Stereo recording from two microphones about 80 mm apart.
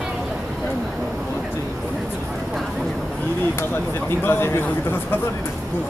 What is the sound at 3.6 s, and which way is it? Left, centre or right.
Speech, left.